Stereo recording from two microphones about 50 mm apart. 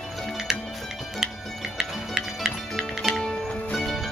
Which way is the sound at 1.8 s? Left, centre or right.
Centre.